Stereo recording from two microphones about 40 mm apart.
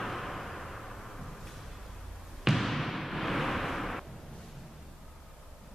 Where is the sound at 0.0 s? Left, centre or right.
Centre.